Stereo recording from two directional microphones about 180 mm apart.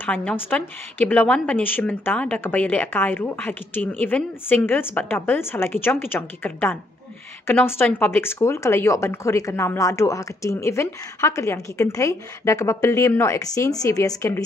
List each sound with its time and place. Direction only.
0.0 s speech: 10° left (ahead or behind)